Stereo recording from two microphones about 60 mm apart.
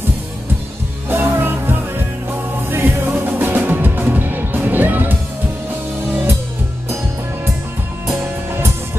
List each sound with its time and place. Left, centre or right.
1.0 s music: right